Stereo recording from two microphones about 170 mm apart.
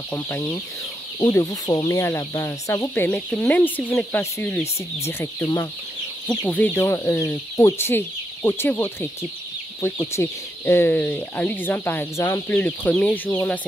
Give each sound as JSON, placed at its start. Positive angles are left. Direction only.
{"t": 0.1, "sound": "speech", "side_deg": 15}
{"t": 2.9, "sound": "speech", "side_deg": 10}